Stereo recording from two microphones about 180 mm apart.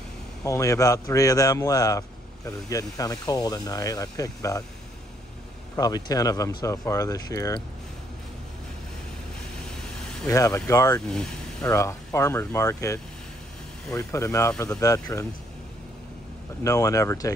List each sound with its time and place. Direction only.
0.5 s a man's voice: 15° left (ahead or behind)
5.8 s a man's voice: 20° left (ahead or behind)
10.2 s a man's voice: 20° left (ahead or behind)
16.6 s speech: 15° left (ahead or behind)